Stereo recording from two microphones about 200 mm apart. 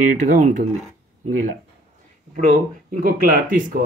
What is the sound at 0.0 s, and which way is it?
Speech, 40° right (ahead or behind).